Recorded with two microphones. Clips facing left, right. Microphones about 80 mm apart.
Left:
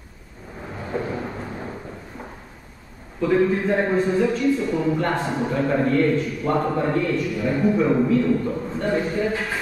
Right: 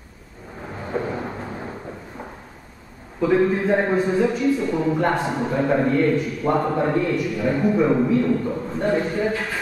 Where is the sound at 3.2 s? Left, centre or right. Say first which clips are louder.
Right 1 dB; centre.